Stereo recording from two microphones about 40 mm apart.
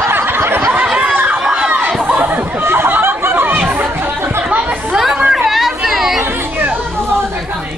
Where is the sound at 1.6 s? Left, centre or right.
Right.